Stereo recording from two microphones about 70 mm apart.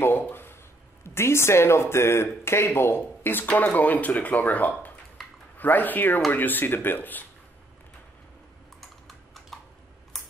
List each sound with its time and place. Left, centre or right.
0.0 s a sound: left
1.0 s speech: left
3.4 s speech: left
5.2 s a sound: centre
5.6 s speech: left
8.8 s typing: centre
10.1 s computer keyboard: centre